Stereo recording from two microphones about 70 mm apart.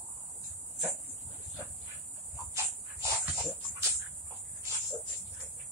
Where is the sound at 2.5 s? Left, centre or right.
Right.